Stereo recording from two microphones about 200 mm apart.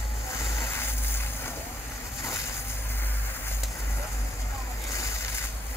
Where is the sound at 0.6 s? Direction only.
10° left (ahead or behind).